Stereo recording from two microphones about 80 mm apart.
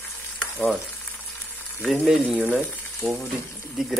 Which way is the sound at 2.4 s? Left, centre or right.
Right.